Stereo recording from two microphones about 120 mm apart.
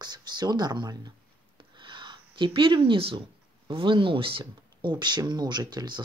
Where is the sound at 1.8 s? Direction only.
40° right (ahead or behind).